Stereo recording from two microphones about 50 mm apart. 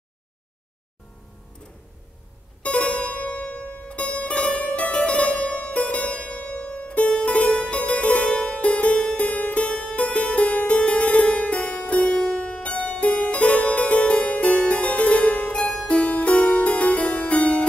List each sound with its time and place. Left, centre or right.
2.6 s music: left
7.2 s harpsichord: left